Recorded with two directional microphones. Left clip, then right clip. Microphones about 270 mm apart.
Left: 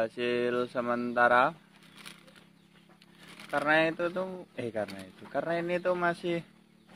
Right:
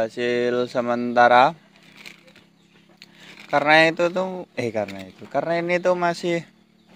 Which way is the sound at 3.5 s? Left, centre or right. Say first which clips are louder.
Right 10 dB; centre.